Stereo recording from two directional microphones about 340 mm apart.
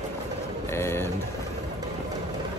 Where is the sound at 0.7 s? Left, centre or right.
Centre.